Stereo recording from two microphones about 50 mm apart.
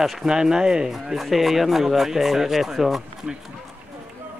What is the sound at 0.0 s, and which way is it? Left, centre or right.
Speech, centre.